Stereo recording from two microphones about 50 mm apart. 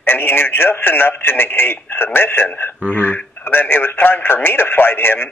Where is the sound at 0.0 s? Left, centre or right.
Left.